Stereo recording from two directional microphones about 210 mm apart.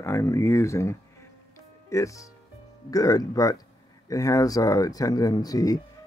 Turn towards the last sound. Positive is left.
turn(degrees=15)  # may be behind; listen again after turning